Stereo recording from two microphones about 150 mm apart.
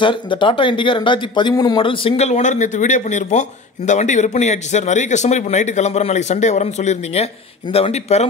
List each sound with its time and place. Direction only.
0.0 s speech: 35° left (ahead or behind)